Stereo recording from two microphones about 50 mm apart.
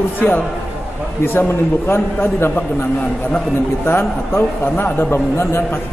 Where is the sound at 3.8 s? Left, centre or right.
Left.